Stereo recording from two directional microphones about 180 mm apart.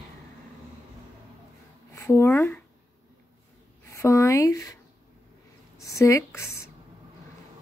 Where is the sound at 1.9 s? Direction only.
15° left (ahead or behind).